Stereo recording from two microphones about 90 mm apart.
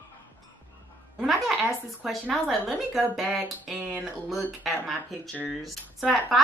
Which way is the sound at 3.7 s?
15° right (ahead or behind).